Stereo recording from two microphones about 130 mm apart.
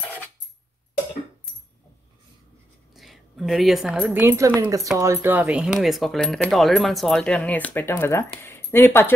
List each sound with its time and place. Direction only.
2.9 s a sound: centre (ahead or behind)
4.1 s speech: 15° right (ahead or behind)
5.6 s speech: centre (ahead or behind); by 9.1 s 15° left (ahead or behind)